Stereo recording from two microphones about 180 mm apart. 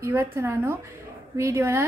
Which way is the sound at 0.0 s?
15° right (ahead or behind).